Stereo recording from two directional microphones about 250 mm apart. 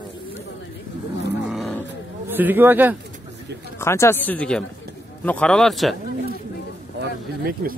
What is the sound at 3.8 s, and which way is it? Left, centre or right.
A man's voice, centre.